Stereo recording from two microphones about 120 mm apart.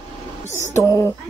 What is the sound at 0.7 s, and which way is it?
Speech, 25° left (ahead or behind).